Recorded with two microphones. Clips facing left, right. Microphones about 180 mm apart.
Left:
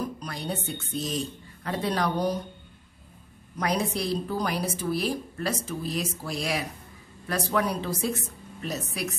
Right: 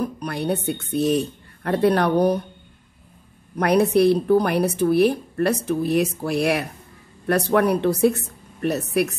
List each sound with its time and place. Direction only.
0.0 s a woman's voice: 60° right (ahead or behind)
3.5 s a woman's voice: 60° right (ahead or behind)